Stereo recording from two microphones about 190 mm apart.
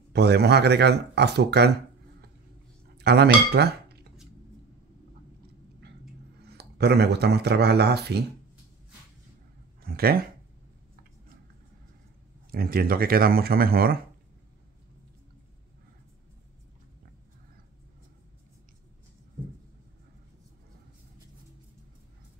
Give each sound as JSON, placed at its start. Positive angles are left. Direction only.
{"t": 0.1, "sound": "speech", "side_deg": -60}
{"t": 3.0, "sound": "speech", "side_deg": -60}
{"t": 6.5, "sound": "speech", "side_deg": -60}
{"t": 9.8, "sound": "speech", "side_deg": -50}
{"t": 12.4, "sound": "speech", "side_deg": -50}